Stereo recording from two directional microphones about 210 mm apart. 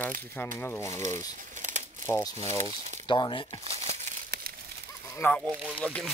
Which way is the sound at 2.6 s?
35° right (ahead or behind).